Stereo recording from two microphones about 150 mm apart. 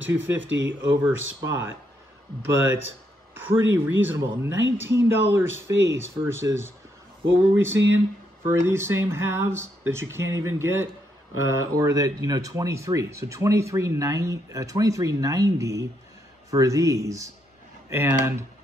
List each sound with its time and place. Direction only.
0.1 s speech: 15° right (ahead or behind)